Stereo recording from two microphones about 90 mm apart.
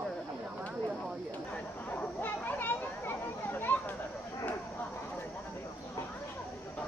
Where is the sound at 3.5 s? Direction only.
25° left (ahead or behind).